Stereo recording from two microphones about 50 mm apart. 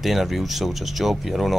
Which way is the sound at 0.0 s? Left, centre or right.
Centre.